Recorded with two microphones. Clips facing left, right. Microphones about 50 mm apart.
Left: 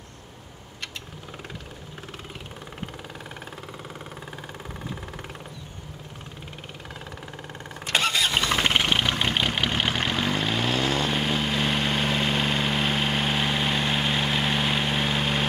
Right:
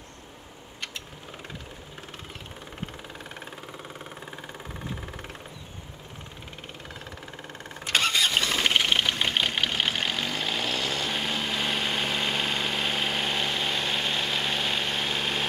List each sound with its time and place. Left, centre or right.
7.9 s vehicle: centre
10.8 s vehicle: left
11.1 s vehicle: centre